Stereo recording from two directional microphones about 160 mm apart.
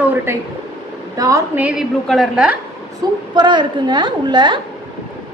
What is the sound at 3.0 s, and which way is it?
A woman's voice, 25° right (ahead or behind).